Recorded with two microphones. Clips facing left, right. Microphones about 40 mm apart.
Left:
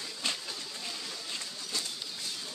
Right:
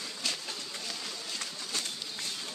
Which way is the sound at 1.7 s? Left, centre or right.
Right.